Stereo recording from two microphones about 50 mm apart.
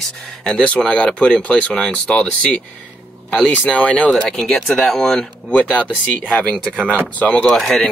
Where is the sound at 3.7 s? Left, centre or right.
Left.